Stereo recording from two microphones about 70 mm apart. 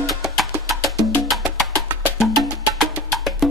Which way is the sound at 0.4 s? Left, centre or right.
Centre.